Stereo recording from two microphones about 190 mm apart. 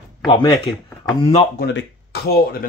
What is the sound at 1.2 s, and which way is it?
Speech, 30° left (ahead or behind).